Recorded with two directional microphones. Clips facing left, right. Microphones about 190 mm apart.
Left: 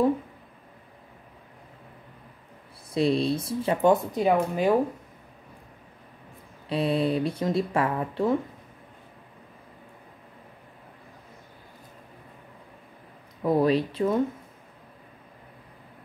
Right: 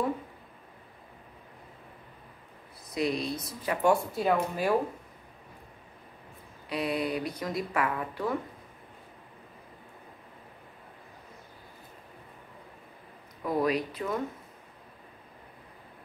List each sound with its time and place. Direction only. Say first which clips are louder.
2.9 s speech: left 7 dB; 30° left (ahead or behind)
6.7 s speech: left 6 dB; 30° left (ahead or behind)
13.4 s speech: left 6 dB; 30° left (ahead or behind)